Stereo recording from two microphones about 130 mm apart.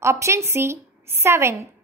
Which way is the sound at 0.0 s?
20° right (ahead or behind).